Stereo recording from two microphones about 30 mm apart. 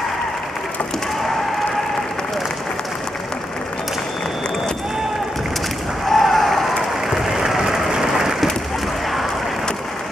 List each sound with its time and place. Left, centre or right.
6.0 s applause: centre
7.1 s applause: centre